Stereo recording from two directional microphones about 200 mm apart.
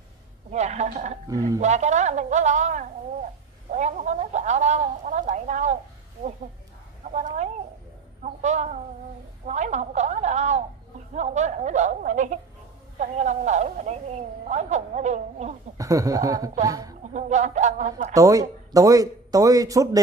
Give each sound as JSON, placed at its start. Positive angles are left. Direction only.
{"t": 0.5, "sound": "a woman's voice", "side_deg": -35}
{"t": 1.3, "sound": "a man's voice", "side_deg": -15}
{"t": 1.6, "sound": "a woman's voice", "side_deg": -35}
{"t": 8.2, "sound": "a sound", "side_deg": -35}
{"t": 9.5, "sound": "a woman's voice", "side_deg": -35}
{"t": 15.8, "sound": "a man's voice", "side_deg": -15}
{"t": 17.1, "sound": "a woman's voice", "side_deg": -35}
{"t": 18.1, "sound": "a man's voice", "side_deg": -15}